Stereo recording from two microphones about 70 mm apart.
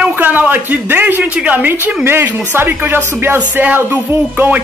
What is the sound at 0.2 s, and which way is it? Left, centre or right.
A man's voice, right.